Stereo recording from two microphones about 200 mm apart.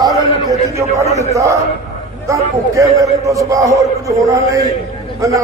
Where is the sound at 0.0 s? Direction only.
15° right (ahead or behind).